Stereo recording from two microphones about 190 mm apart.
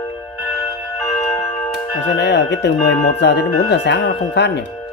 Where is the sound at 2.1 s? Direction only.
65° left (ahead or behind).